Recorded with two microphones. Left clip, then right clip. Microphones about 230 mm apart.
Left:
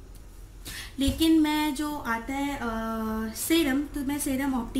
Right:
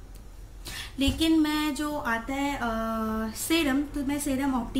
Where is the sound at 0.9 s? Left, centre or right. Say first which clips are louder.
Left 1 dB; centre.